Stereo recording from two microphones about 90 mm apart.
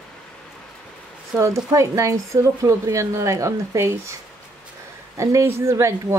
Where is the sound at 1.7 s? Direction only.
35° right (ahead or behind).